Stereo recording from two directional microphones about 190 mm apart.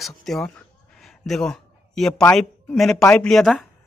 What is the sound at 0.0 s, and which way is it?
A man's voice, centre (ahead or behind).